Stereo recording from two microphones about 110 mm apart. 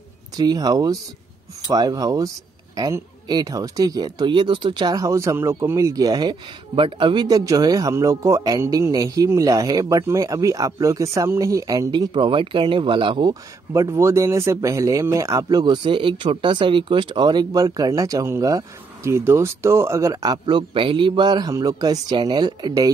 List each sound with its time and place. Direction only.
0.4 s speech: 35° right (ahead or behind)
7.2 s speech: 35° right (ahead or behind)
12.1 s speech: 50° right (ahead or behind)
13.3 s speech: 30° right (ahead or behind)
15.4 s speech: 40° right (ahead or behind)